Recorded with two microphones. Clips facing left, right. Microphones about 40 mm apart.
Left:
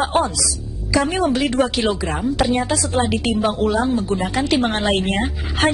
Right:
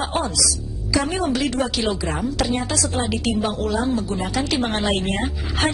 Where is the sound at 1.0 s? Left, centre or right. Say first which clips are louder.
Left 4 dB; left.